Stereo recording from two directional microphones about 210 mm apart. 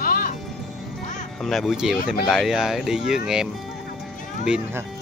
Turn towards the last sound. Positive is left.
turn(degrees=-5)  # may be behind; listen again after turning